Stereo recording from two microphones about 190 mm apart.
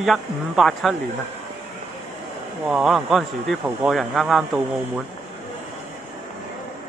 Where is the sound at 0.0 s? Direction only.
Centre (ahead or behind).